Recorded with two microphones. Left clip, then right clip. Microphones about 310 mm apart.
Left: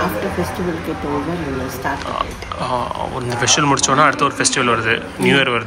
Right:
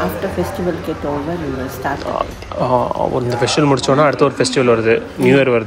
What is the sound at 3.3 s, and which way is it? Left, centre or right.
Speech, centre.